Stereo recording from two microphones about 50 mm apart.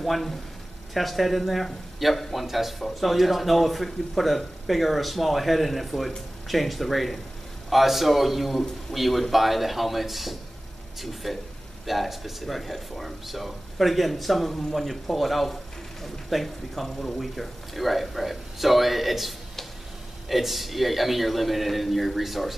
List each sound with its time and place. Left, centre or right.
0.0 s speech: centre